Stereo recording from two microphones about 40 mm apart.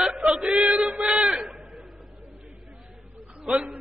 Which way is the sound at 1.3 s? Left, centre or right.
Centre.